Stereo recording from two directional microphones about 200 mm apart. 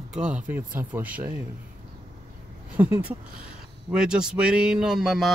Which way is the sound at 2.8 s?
10° right (ahead or behind).